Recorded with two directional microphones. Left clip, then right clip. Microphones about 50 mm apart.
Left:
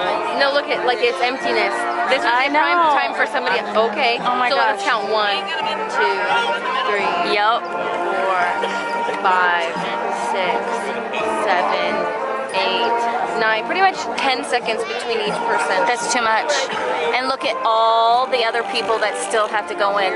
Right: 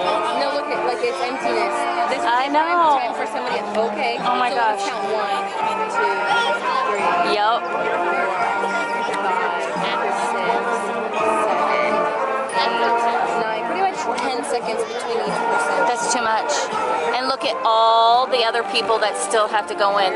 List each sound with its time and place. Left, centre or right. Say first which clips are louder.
0.4 s a woman's voice: left 3 dB; left
7.2 s speech: left 1 dB; centre
15.5 s speech: left 1 dB; right
15.9 s speech: left 2 dB; centre
17.6 s speech: right 1 dB; centre